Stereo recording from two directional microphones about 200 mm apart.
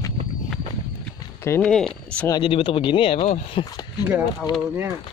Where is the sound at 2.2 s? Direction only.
25° left (ahead or behind).